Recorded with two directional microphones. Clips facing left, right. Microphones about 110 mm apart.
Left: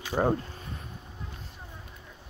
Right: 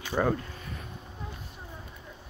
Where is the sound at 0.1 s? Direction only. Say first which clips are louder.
Left 1 dB; 30° left (ahead or behind).